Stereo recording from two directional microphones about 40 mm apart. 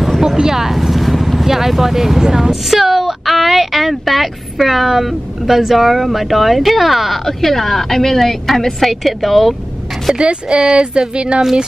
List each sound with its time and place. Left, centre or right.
0.2 s speech: centre
7.2 s a woman's voice: centre
10.1 s speech: right